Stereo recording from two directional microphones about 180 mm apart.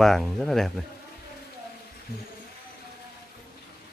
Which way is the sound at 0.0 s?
Centre (ahead or behind).